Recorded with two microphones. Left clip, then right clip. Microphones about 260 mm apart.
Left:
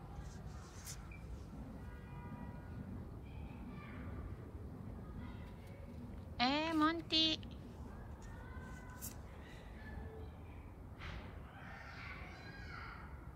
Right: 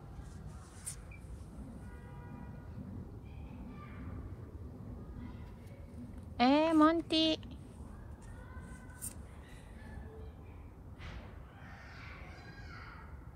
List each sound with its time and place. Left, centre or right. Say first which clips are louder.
6.3 s a woman's voice: right 8 dB; centre